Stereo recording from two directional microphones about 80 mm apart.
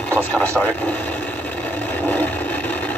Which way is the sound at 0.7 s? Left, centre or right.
Left.